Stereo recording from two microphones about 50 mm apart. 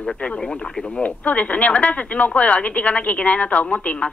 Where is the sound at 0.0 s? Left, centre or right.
Left.